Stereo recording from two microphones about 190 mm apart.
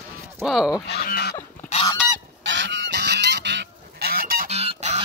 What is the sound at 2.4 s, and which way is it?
Goose, 75° right (ahead or behind).